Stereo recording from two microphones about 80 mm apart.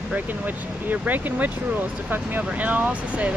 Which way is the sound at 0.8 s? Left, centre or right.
Right.